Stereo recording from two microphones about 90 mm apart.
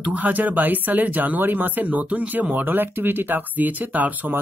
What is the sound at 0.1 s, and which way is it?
Speech, 20° right (ahead or behind).